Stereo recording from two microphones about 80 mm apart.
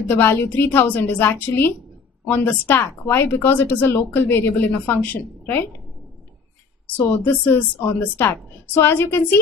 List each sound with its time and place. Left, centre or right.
0.1 s speech: left
7.0 s speech: left